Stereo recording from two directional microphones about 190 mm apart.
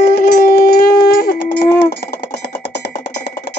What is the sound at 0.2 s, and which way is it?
Shofar, 45° left (ahead or behind).